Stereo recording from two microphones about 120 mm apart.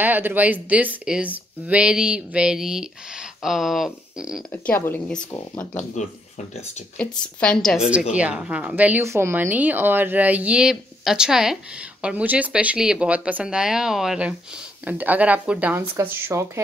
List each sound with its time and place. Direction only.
0.0 s speech: 15° right (ahead or behind)
4.5 s speech: 20° left (ahead or behind)
7.0 s speech: 10° left (ahead or behind)
8.1 s speech: 10° right (ahead or behind)
9.0 s speech: 20° right (ahead or behind)